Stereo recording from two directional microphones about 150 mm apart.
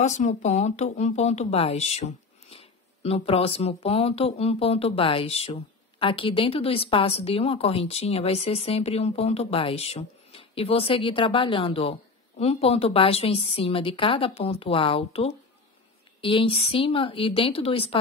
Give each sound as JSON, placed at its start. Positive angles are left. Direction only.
{"t": 0.0, "sound": "speech", "side_deg": 50}